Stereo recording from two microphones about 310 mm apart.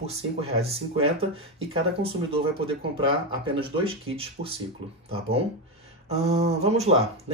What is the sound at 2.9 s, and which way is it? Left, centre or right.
Speech, centre.